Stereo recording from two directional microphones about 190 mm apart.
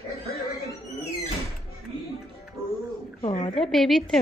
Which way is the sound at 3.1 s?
35° left (ahead or behind).